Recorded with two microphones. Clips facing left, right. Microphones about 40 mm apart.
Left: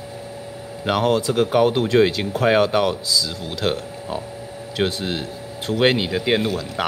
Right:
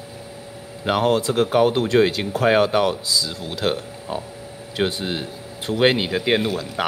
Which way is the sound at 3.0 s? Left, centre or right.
Centre.